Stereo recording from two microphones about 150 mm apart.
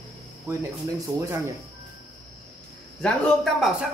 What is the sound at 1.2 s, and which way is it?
Speech, 15° right (ahead or behind).